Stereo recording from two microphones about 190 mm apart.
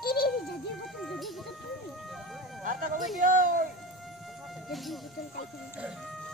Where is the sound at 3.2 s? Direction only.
45° right (ahead or behind).